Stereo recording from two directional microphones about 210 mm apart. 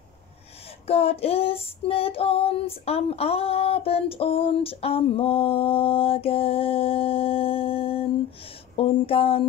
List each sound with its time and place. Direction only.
0.8 s female singing: 30° left (ahead or behind)